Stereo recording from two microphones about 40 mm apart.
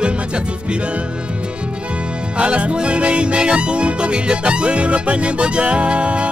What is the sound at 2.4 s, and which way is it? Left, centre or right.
Music, right.